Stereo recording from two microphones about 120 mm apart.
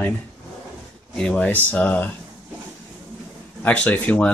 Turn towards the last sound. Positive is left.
turn(degrees=15)  # may be behind; listen again after turning